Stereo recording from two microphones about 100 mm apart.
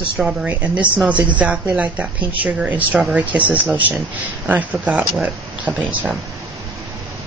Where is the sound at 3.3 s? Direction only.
15° right (ahead or behind).